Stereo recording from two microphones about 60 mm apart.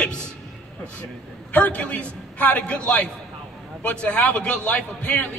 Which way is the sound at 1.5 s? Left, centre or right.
Left.